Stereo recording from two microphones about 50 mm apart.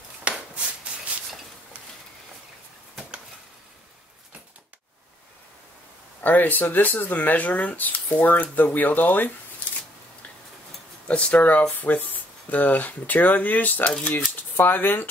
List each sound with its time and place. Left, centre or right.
0.3 s a sound: right
6.2 s speech: left
11.1 s speech: left